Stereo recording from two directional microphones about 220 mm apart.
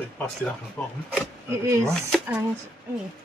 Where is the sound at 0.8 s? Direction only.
5° left (ahead or behind).